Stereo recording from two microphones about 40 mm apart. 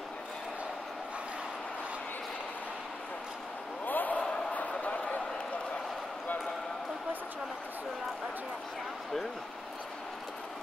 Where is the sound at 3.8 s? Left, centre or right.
Left.